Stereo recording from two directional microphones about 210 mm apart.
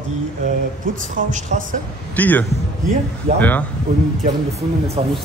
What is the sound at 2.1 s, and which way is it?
Speech, 10° left (ahead or behind).